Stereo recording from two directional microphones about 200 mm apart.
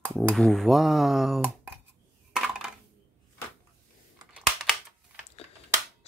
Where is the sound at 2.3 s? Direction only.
5° right (ahead or behind).